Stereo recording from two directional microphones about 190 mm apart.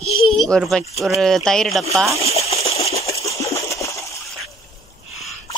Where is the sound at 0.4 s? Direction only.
Centre (ahead or behind).